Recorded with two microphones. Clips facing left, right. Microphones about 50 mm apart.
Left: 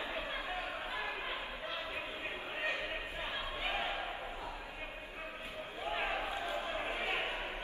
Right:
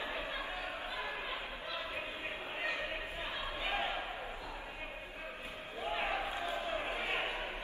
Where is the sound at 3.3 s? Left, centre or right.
Left.